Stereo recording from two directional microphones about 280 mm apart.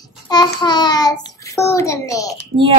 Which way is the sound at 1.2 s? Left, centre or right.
Centre.